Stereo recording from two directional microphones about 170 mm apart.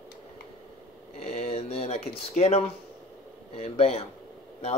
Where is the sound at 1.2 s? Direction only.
35° left (ahead or behind).